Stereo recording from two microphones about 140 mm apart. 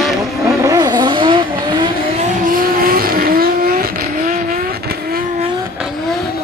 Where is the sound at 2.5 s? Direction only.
90° right.